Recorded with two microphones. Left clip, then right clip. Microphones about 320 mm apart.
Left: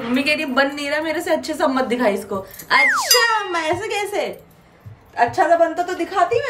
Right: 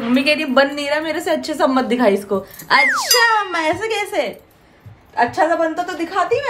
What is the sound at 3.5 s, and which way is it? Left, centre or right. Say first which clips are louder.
Speech: right 2 dB; centre.